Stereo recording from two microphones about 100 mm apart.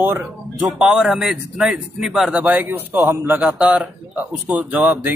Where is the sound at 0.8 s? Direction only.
5° right (ahead or behind).